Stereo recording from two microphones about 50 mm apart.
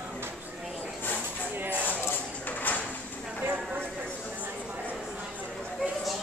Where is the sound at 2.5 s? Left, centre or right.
Left.